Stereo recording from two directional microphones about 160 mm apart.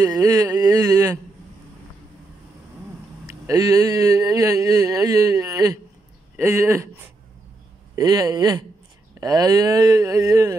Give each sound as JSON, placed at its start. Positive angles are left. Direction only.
{"t": 0.0, "sound": "speech", "side_deg": -25}
{"t": 3.3, "sound": "speech", "side_deg": -20}
{"t": 7.9, "sound": "speech", "side_deg": -25}